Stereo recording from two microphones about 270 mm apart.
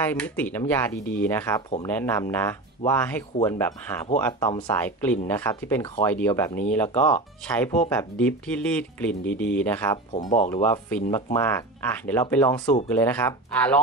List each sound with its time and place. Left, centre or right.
0.0 s speech: centre
10.1 s speech: left
10.5 s speech: centre